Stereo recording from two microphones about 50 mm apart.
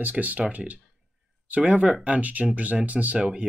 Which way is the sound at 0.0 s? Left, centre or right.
Right.